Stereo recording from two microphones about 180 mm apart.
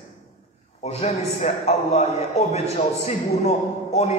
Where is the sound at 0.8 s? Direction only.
35° left (ahead or behind).